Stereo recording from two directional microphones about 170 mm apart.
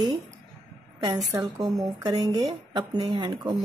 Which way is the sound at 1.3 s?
20° right (ahead or behind).